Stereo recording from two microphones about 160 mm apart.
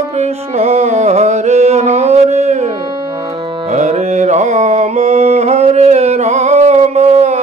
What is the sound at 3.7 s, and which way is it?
Music, 45° right (ahead or behind).